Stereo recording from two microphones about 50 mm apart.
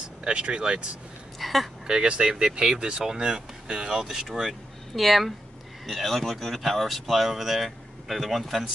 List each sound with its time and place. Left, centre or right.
0.2 s speech: centre
1.4 s a woman's voice: centre
1.9 s speech: centre